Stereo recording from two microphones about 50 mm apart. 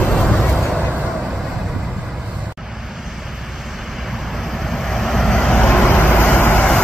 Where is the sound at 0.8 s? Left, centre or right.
Right.